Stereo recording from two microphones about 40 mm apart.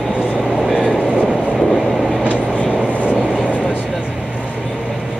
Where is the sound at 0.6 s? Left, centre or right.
Centre.